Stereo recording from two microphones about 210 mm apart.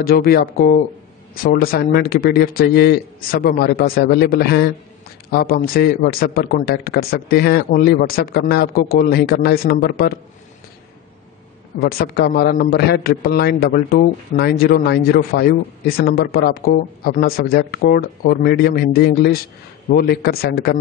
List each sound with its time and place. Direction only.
0.0 s a man's voice: 45° left (ahead or behind)
11.8 s a man's voice: 45° left (ahead or behind)